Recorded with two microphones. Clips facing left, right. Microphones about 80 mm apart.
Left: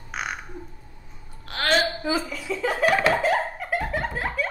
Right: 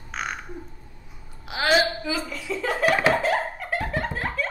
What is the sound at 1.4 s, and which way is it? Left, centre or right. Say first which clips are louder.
Speech: right 2 dB; centre.